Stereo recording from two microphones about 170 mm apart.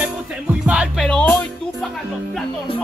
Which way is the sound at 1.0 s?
10° left (ahead or behind).